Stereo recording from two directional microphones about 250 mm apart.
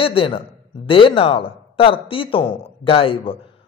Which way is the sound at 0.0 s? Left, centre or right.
Left.